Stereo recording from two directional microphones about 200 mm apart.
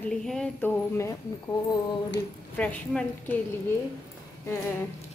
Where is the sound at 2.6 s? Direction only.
5° left (ahead or behind).